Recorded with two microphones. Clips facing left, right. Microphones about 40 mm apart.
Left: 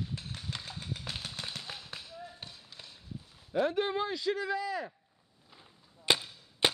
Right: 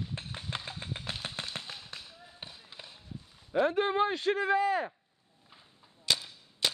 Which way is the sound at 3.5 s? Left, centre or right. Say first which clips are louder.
Right 2 dB; right.